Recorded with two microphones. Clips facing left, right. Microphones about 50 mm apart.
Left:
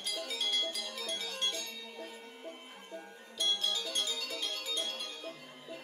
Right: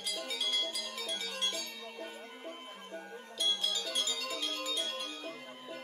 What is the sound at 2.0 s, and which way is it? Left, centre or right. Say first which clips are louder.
Music: right 3 dB; right.